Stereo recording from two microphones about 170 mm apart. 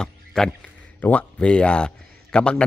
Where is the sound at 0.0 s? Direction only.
5° left (ahead or behind).